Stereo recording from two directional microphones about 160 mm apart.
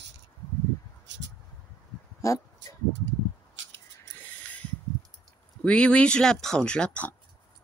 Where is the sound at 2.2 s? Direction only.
20° left (ahead or behind).